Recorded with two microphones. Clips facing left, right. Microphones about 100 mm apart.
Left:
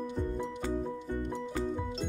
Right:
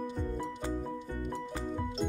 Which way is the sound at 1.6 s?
5° left (ahead or behind).